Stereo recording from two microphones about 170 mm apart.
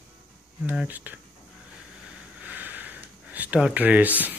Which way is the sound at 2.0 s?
5° right (ahead or behind).